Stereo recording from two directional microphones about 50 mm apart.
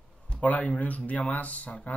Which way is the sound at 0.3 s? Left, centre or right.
Left.